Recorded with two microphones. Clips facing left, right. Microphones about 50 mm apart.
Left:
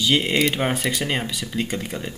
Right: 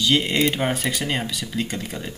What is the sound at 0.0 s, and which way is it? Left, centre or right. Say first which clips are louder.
Speech: even; centre.